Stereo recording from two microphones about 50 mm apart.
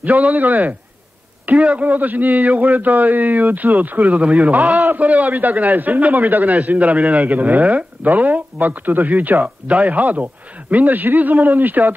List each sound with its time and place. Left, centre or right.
0.0 s a man's voice: right